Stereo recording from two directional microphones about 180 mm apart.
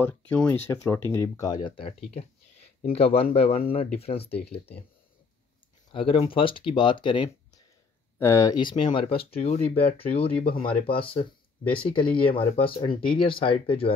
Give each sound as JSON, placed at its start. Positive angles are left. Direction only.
{"t": 0.3, "sound": "speech", "side_deg": 10}
{"t": 5.9, "sound": "speech", "side_deg": 30}